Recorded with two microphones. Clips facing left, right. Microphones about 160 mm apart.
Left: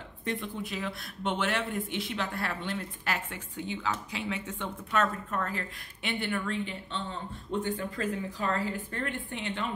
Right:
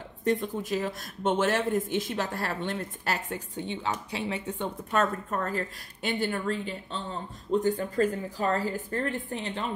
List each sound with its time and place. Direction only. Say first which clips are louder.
0.2 s speech: right 7 dB; 40° right (ahead or behind)